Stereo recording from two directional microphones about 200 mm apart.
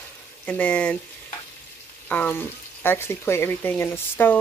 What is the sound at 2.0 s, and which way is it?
Speech, 10° left (ahead or behind).